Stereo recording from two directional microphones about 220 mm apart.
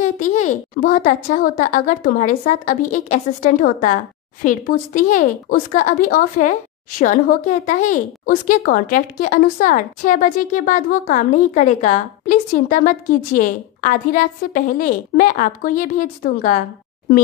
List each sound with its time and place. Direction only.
0.2 s speech: 35° left (ahead or behind)